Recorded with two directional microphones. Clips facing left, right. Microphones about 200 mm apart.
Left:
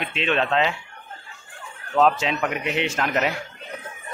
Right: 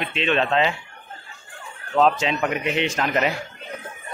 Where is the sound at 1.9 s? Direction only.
5° left (ahead or behind).